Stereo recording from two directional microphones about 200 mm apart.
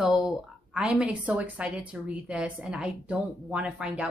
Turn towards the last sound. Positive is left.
turn(degrees=-5)  # may be behind; listen again after turning